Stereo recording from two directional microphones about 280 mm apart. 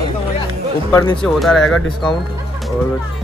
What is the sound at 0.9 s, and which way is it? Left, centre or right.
A man's voice, centre.